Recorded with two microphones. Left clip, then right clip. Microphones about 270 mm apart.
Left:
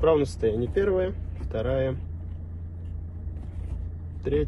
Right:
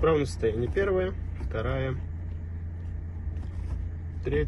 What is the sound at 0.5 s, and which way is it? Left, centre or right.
Speech, left.